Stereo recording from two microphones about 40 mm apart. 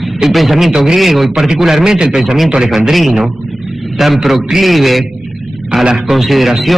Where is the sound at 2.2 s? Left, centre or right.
Centre.